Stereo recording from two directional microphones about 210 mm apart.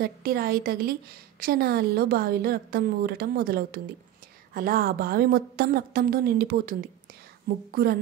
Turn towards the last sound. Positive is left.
turn(degrees=-45)  # may be behind; listen again after turning